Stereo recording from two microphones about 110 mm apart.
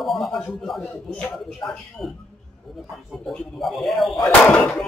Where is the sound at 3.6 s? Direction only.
Centre (ahead or behind).